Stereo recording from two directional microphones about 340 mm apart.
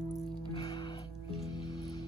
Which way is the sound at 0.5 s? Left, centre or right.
Centre.